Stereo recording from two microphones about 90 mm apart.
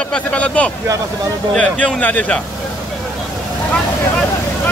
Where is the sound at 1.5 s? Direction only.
15° left (ahead or behind).